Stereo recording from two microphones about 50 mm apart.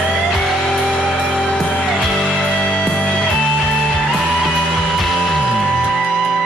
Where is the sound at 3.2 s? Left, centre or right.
Centre.